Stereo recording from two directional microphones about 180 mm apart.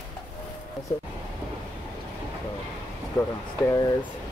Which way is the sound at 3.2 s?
20° left (ahead or behind).